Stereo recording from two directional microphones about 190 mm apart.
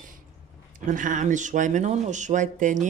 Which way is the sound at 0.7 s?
45° right (ahead or behind).